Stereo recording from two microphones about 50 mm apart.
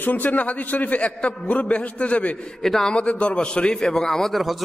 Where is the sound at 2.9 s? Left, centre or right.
Left; by 4.6 s centre.